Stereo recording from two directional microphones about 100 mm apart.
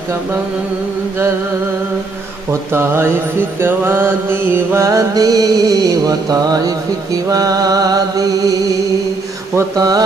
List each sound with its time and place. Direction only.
2.7 s mantra: 25° right (ahead or behind)
7.2 s music: 35° right (ahead or behind)
9.6 s music: 40° right (ahead or behind)